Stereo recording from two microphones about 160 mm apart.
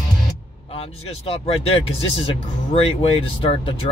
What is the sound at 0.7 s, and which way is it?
Speech, 35° left (ahead or behind).